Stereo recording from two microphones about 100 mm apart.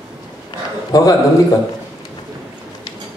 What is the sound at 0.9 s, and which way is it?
Speech, 40° left (ahead or behind).